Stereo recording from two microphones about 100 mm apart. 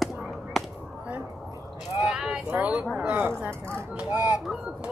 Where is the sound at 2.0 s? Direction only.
5° right (ahead or behind).